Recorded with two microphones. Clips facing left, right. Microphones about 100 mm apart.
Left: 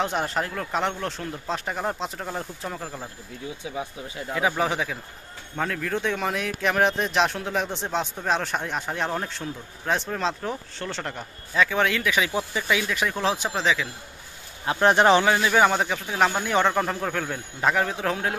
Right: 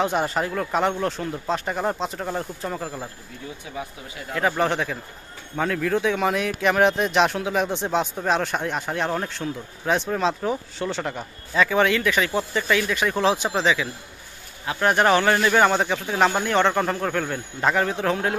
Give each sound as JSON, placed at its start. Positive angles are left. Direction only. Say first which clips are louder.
{"t": 0.0, "sound": "speech", "louder": "right 3 dB", "side_deg": 0}
{"t": 3.6, "sound": "speech", "louder": "left 2 dB", "side_deg": 15}
{"t": 14.7, "sound": "speech", "louder": "left 1 dB", "side_deg": 25}
{"t": 15.2, "sound": "speech", "louder": "right 1 dB", "side_deg": 5}